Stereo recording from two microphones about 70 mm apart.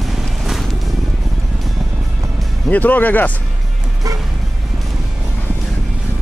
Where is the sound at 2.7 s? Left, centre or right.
Left.